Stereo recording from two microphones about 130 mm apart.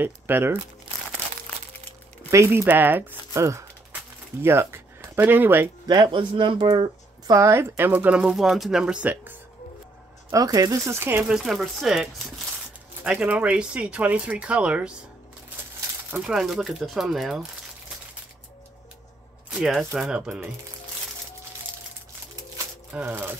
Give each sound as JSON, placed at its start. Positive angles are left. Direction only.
{"t": 0.0, "sound": "speech", "side_deg": -15}
{"t": 2.3, "sound": "speech", "side_deg": -20}
{"t": 5.9, "sound": "speech", "side_deg": -35}
{"t": 10.3, "sound": "speech", "side_deg": -25}
{"t": 11.2, "sound": "speech", "side_deg": -5}
{"t": 16.1, "sound": "speech", "side_deg": -5}
{"t": 19.5, "sound": "speech", "side_deg": 0}
{"t": 22.8, "sound": "speech", "side_deg": -15}